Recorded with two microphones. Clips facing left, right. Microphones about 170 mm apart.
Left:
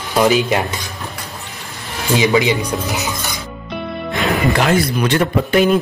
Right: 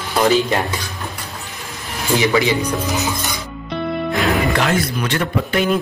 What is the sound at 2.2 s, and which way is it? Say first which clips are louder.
Speech: left 2 dB; 20° left (ahead or behind).